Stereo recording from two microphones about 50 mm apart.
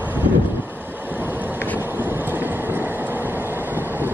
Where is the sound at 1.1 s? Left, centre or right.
Right.